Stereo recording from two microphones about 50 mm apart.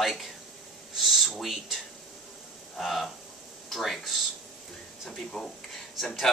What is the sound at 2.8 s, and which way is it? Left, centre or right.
Speech, centre.